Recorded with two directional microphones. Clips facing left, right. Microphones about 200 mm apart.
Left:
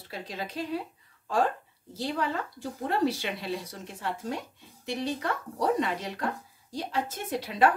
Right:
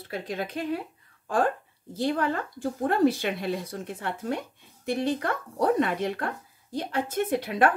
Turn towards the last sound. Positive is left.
turn(degrees=-55)  # may be behind; listen again after turning